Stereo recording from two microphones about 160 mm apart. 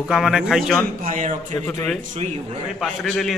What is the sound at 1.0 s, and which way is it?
Speech, 55° right (ahead or behind).